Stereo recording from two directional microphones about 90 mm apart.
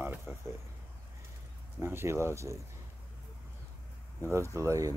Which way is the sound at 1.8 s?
25° right (ahead or behind).